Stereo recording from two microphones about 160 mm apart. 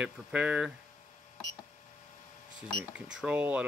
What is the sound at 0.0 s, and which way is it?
Speech, 10° right (ahead or behind).